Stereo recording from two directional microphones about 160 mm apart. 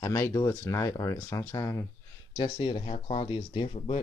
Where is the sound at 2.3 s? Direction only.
30° left (ahead or behind).